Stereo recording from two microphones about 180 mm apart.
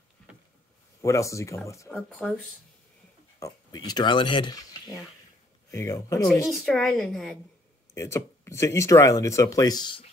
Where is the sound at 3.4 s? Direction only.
20° left (ahead or behind).